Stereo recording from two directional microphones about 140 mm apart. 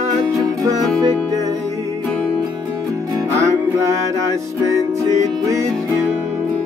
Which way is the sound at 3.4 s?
20° right (ahead or behind).